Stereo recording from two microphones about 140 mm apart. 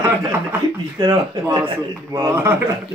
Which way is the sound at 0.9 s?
30° right (ahead or behind).